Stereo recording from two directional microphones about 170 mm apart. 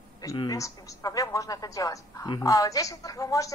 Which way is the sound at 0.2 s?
20° left (ahead or behind).